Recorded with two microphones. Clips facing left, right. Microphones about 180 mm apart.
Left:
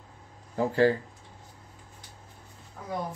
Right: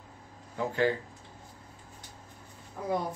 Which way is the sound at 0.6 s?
35° left (ahead or behind).